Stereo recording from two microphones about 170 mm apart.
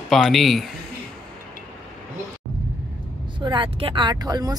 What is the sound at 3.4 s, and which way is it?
Speech, 30° right (ahead or behind).